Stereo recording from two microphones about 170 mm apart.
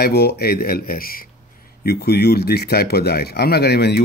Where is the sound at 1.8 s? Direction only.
70° left (ahead or behind).